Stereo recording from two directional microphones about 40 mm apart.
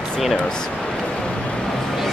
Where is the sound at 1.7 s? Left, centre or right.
Centre.